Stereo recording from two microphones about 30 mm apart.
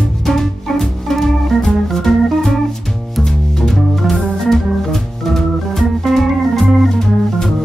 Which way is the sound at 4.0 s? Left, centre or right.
Centre.